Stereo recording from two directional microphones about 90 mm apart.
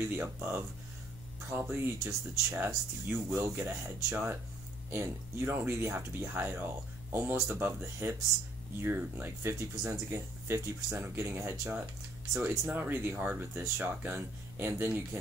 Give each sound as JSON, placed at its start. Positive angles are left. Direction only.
{"t": 0.0, "sound": "speech", "side_deg": -25}